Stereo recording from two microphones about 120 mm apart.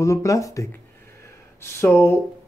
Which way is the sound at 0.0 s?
25° left (ahead or behind).